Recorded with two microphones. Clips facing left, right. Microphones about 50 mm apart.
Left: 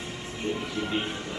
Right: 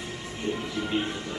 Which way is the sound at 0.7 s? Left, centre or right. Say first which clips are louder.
Right 1 dB; left.